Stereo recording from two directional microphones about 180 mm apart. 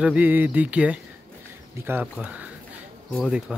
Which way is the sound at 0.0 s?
10° right (ahead or behind).